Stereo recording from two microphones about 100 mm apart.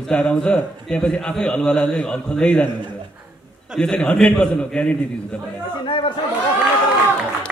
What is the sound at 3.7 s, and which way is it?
A man's voice, 10° left (ahead or behind).